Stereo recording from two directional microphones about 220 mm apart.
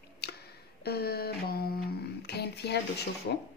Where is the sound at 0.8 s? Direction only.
45° left (ahead or behind).